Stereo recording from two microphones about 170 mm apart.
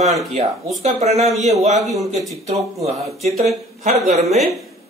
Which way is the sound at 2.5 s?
40° right (ahead or behind).